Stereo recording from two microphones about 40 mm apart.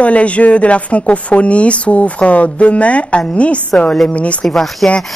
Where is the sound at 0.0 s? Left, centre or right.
Left.